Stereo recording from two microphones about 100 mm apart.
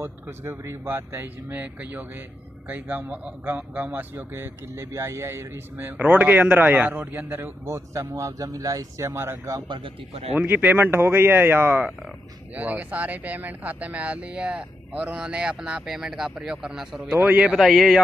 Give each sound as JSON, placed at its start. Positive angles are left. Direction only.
{"t": 0.0, "sound": "a man's voice", "side_deg": -25}
{"t": 17.2, "sound": "speech", "side_deg": -15}
{"t": 17.6, "sound": "a man's voice", "side_deg": 0}